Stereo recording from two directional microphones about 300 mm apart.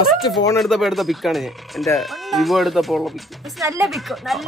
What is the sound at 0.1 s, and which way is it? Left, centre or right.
A man's voice, centre.